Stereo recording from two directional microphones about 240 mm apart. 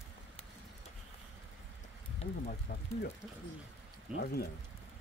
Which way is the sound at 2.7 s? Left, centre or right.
Left.